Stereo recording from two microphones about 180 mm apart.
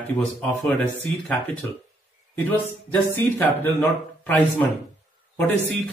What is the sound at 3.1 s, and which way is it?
Speech, 10° left (ahead or behind).